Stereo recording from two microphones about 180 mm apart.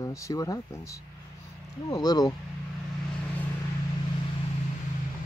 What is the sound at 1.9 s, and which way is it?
Speech, 20° left (ahead or behind).